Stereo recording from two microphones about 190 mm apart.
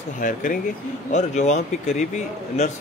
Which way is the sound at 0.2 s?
45° left (ahead or behind).